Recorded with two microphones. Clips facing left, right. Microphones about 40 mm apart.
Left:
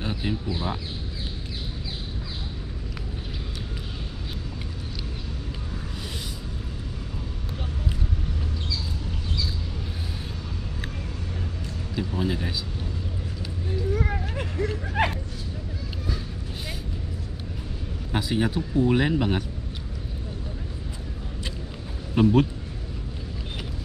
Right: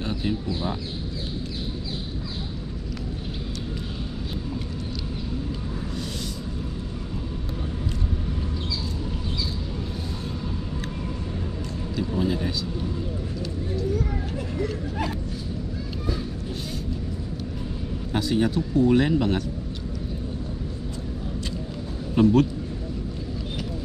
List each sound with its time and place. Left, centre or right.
0.0 s speech: centre
11.9 s a sound: centre
13.9 s a sound: left
15.0 s hubbub: left
18.1 s speech: centre
22.1 s a man's voice: centre